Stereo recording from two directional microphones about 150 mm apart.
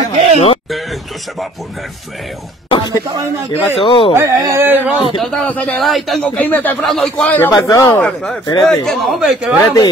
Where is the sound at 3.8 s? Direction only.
35° left (ahead or behind).